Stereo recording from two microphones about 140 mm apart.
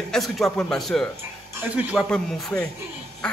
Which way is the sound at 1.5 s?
10° right (ahead or behind).